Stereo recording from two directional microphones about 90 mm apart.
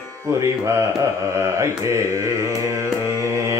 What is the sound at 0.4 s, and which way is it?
Mantra, 35° right (ahead or behind).